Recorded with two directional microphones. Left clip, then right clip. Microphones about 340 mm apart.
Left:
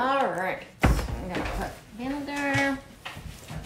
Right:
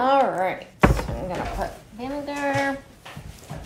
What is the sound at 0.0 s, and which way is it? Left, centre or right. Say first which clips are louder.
Thunk: right 6 dB; right.